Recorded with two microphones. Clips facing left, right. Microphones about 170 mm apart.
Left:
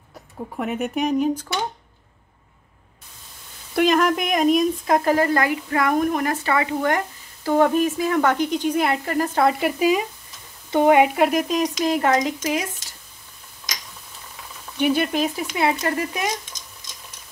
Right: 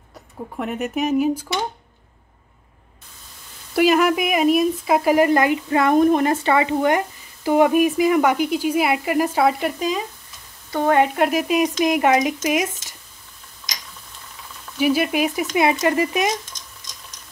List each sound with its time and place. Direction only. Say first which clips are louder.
0.6 s speech: even; centre (ahead or behind)
3.7 s speech: right 2 dB; 5° right (ahead or behind); by 11.1 s 15° left (ahead or behind)
11.1 s speech: right 1 dB; centre (ahead or behind)
14.8 s speech: right 1 dB; 5° right (ahead or behind)